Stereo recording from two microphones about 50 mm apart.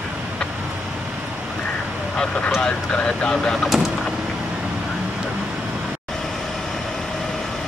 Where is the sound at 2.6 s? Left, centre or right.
Centre.